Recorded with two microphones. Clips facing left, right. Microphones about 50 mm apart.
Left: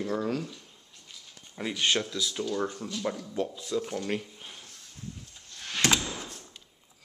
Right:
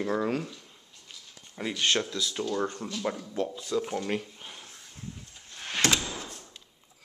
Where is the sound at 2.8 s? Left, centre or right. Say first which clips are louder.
Even; right.